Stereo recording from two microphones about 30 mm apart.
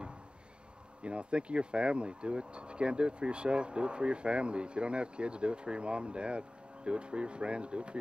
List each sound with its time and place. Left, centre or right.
1.0 s speech: right